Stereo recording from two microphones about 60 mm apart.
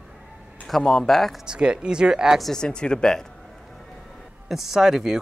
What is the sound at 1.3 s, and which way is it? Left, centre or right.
Speech, centre.